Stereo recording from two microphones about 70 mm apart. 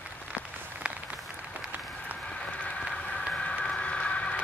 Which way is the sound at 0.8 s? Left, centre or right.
Centre.